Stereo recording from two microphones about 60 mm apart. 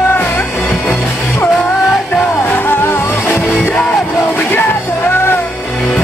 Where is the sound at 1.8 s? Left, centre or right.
Centre.